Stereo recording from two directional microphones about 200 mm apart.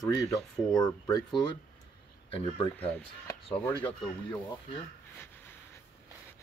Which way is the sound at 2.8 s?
5° left (ahead or behind).